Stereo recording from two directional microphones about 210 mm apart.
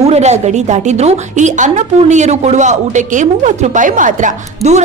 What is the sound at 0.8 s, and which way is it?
A woman's voice, 35° right (ahead or behind).